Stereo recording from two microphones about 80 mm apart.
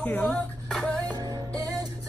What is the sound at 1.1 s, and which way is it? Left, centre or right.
Music, right.